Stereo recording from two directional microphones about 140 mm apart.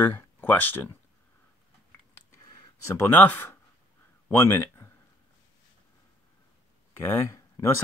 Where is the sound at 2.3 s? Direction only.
20° left (ahead or behind).